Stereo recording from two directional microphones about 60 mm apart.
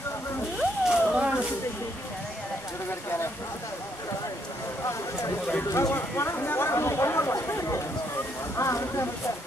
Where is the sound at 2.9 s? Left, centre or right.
Left.